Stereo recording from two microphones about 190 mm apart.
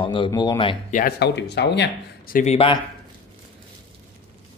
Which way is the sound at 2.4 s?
30° left (ahead or behind).